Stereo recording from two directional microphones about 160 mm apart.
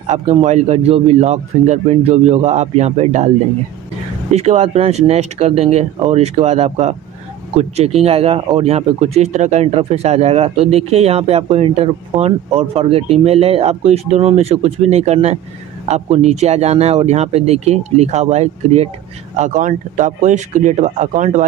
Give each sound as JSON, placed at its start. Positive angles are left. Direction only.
{"t": 0.0, "sound": "speech", "side_deg": -45}
{"t": 4.3, "sound": "speech", "side_deg": -45}